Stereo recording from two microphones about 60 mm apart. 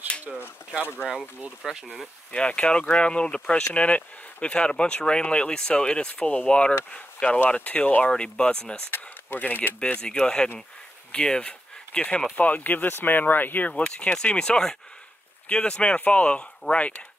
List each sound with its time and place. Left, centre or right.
0.3 s speech: centre
1.0 s speech: centre
2.3 s speech: centre
8.9 s speech: left
9.8 s speech: centre